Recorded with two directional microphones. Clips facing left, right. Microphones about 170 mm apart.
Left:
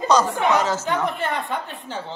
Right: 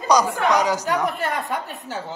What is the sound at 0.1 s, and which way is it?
Speech, 10° right (ahead or behind).